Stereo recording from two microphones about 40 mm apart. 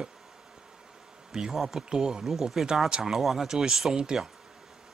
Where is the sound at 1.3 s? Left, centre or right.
Centre.